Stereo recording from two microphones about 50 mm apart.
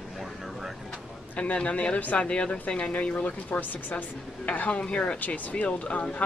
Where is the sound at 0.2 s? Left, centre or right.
Centre.